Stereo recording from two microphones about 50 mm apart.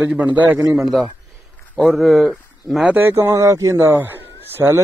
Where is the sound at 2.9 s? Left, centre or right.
Right.